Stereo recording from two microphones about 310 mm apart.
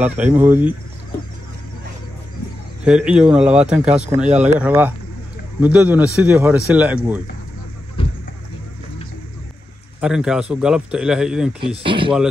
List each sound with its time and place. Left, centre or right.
0.0 s speech: centre
2.8 s speech: centre
8.0 s a sound: centre
9.9 s speech: centre
11.8 s speech: centre